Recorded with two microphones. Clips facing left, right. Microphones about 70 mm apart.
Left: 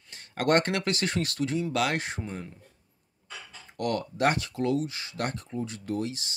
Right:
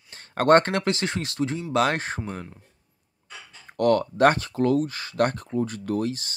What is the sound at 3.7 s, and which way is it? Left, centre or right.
Speech, right.